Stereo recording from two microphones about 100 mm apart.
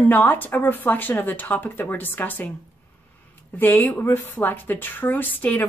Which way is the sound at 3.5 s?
20° left (ahead or behind).